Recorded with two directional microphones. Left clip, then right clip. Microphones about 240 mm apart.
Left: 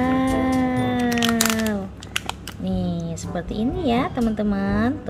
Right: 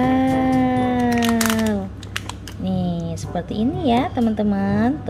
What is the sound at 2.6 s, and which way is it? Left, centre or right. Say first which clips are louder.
A woman's voice: right 2 dB; centre.